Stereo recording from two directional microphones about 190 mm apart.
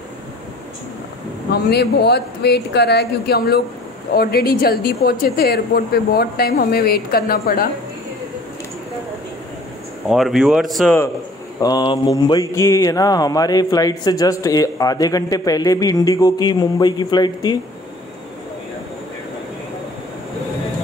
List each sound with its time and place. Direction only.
1.5 s a woman's voice: 60° left (ahead or behind)
10.0 s speech: centre (ahead or behind)
11.6 s speech: 25° left (ahead or behind)